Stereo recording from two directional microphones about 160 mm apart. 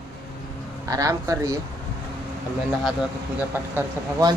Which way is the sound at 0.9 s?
20° right (ahead or behind).